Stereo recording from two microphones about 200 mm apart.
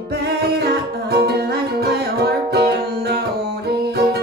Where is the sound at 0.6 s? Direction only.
55° right (ahead or behind).